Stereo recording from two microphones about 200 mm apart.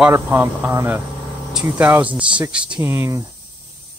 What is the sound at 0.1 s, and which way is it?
Speech, 10° right (ahead or behind).